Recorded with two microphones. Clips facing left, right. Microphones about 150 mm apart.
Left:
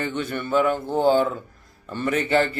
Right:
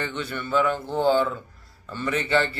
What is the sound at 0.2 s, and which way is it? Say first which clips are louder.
Speech: left 2 dB; 45° left (ahead or behind).